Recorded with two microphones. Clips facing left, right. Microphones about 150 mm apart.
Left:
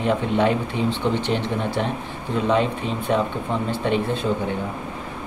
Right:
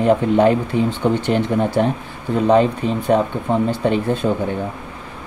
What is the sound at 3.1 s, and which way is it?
Speech, 40° right (ahead or behind).